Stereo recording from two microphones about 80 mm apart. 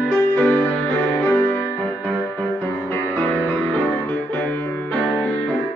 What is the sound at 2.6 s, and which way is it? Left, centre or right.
Music, left.